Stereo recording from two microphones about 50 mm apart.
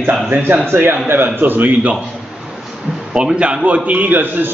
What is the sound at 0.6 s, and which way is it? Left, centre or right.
A man's voice, right.